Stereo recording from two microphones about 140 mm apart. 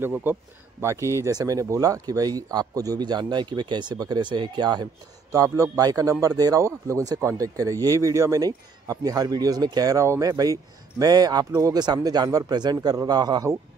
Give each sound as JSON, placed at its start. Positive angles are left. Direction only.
{"t": 0.0, "sound": "speech", "side_deg": -15}